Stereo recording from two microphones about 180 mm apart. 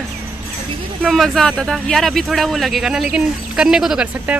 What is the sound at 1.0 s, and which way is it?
Speech, centre (ahead or behind).